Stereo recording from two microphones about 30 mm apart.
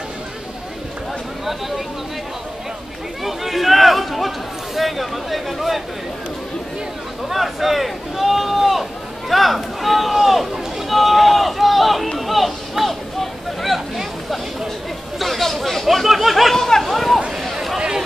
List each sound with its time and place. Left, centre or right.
3.3 s speech: centre
7.2 s a sound: centre
9.3 s speech: centre
12.2 s a sound: centre
12.8 s vehicle: centre
15.1 s speech: centre
16.5 s speech: centre
16.8 s speech: centre
17.7 s a sound: right